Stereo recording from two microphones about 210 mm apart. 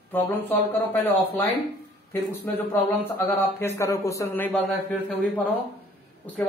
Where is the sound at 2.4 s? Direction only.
10° left (ahead or behind).